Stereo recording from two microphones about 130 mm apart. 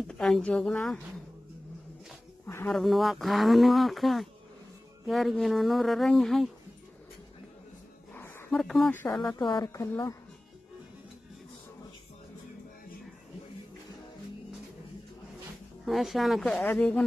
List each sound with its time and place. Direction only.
0.1 s a woman's voice: 5° left (ahead or behind)
2.4 s a sound: 15° left (ahead or behind)
2.7 s speech: centre (ahead or behind)
8.1 s a sound: 20° left (ahead or behind)
8.5 s speech: 5° left (ahead or behind)
9.4 s a woman's voice: 35° left (ahead or behind)
15.8 s speech: centre (ahead or behind)